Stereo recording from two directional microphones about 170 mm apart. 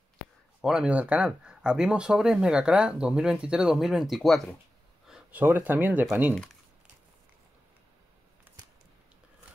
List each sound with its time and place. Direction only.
0.6 s speech: 5° right (ahead or behind)